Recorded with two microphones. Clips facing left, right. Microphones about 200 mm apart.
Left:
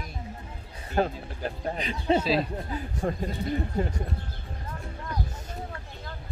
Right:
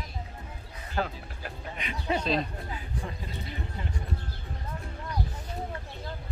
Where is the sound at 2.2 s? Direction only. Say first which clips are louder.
Left 3 dB; 5° left (ahead or behind).